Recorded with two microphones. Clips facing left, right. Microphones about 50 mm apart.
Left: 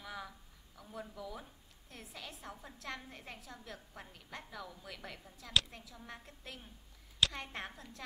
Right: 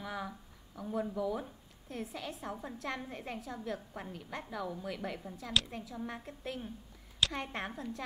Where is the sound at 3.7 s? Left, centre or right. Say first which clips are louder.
Right 8 dB; right.